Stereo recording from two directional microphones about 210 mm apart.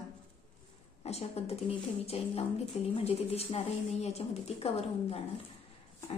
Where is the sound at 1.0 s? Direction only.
30° left (ahead or behind).